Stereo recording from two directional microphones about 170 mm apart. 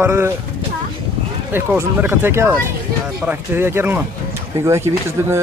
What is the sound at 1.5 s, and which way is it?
Speech, 15° right (ahead or behind).